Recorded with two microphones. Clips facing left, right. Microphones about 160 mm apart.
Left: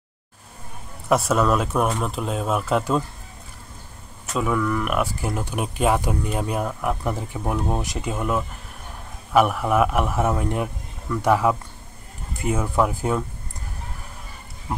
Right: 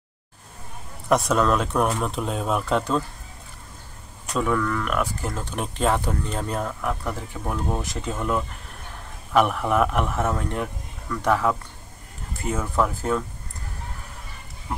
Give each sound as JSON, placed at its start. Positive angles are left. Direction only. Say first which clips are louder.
{"t": 1.0, "sound": "speech", "louder": "left 1 dB", "side_deg": 5}
{"t": 4.3, "sound": "speech", "louder": "left 1 dB", "side_deg": 5}